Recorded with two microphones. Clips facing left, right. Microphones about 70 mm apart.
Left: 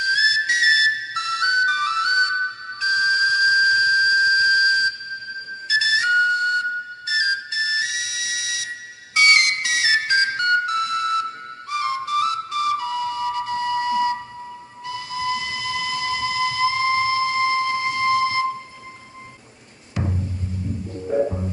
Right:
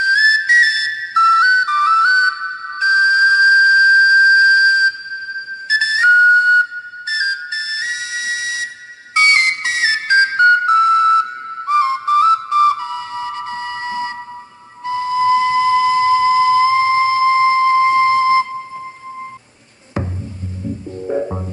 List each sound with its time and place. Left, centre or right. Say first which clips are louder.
0.0 s whistle: right 7 dB; right
2.8 s music: right 7 dB; right
5.7 s whistle: right 7 dB; right